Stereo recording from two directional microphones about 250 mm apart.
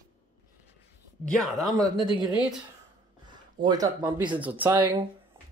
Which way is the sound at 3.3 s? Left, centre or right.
Centre.